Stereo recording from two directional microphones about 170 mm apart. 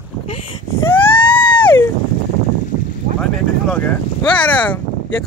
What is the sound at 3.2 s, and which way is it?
Vehicle, 5° left (ahead or behind).